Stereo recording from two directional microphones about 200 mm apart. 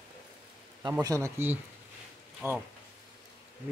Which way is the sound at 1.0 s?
15° right (ahead or behind).